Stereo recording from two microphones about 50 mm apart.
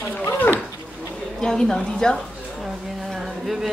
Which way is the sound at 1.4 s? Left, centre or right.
Centre.